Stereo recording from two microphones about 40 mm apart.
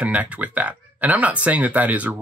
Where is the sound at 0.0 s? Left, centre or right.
Right.